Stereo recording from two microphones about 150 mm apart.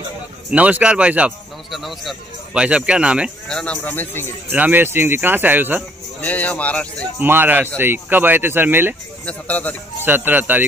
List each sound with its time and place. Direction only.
0.5 s a man's voice: 10° right (ahead or behind)
3.4 s speech: 5° left (ahead or behind)
4.5 s a man's voice: 10° right (ahead or behind)
6.2 s speech: 10° left (ahead or behind)
7.2 s a man's voice: 15° right (ahead or behind)
9.2 s speech: 10° left (ahead or behind)
10.0 s a man's voice: 15° right (ahead or behind)